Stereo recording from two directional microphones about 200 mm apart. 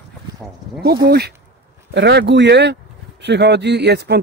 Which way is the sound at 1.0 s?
50° right (ahead or behind).